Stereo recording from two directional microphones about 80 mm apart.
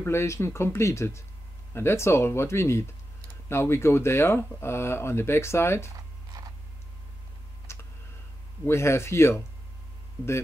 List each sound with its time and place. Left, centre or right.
0.0 s speech: left
7.7 s tick: left
8.6 s speech: left